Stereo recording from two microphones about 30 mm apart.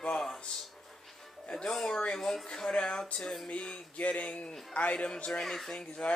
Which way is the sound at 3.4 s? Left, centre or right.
Left.